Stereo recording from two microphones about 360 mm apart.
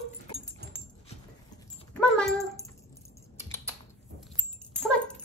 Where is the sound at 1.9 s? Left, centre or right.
Centre.